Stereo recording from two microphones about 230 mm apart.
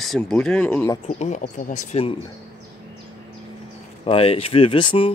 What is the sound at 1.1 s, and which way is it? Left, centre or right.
Speech, left.